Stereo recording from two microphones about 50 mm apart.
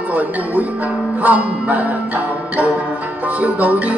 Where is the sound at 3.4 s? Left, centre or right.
Right.